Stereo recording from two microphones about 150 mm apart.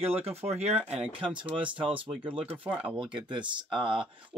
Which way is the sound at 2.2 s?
10° right (ahead or behind).